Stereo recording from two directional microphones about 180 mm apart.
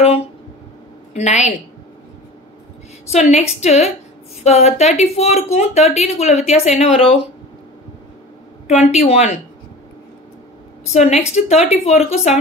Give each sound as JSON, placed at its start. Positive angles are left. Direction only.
{"t": 1.1, "sound": "a woman's voice", "side_deg": 40}
{"t": 3.1, "sound": "a woman's voice", "side_deg": 35}
{"t": 8.6, "sound": "a woman's voice", "side_deg": 35}
{"t": 10.9, "sound": "a woman's voice", "side_deg": 40}